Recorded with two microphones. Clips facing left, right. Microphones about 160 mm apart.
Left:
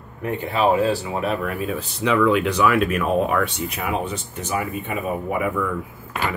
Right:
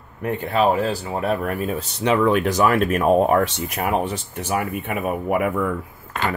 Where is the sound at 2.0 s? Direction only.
35° right (ahead or behind).